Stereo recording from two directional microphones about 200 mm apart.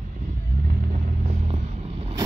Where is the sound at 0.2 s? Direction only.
40° right (ahead or behind).